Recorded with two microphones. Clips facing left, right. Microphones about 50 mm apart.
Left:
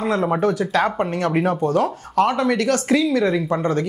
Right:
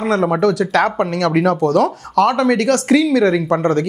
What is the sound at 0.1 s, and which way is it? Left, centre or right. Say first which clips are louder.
Speech: right 5 dB; right.